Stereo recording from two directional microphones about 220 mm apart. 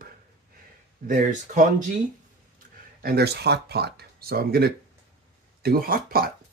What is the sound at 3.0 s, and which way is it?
Speech, 45° right (ahead or behind).